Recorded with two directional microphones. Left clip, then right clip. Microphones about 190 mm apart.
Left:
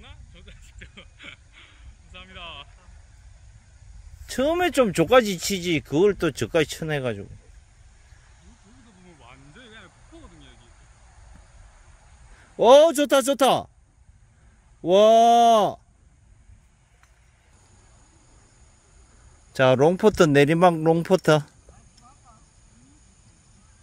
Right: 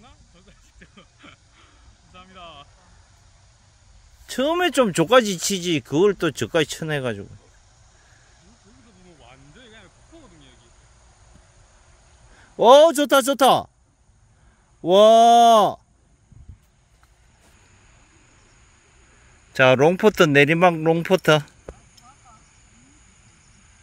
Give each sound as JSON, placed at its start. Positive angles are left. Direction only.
{"t": 0.0, "sound": "a sound", "side_deg": 30}
{"t": 2.1, "sound": "vehicle", "side_deg": 35}
{"t": 4.3, "sound": "speech", "side_deg": -5}
{"t": 9.2, "sound": "a sound", "side_deg": 45}
{"t": 12.5, "sound": "speech", "side_deg": -10}
{"t": 14.8, "sound": "speech", "side_deg": -10}
{"t": 19.5, "sound": "speech", "side_deg": 0}